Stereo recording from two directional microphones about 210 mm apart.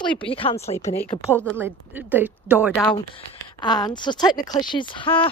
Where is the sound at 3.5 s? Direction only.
20° left (ahead or behind).